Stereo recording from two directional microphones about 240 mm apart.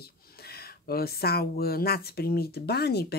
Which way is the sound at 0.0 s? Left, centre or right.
Left.